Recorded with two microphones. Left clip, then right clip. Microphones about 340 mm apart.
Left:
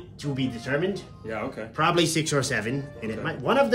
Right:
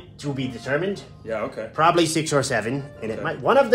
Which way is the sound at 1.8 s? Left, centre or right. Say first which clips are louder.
Right 4 dB; centre.